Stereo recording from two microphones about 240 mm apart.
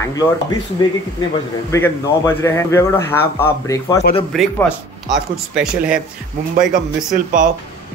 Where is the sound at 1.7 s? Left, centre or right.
Centre.